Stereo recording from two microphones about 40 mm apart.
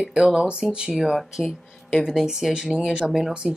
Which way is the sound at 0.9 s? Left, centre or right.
Centre.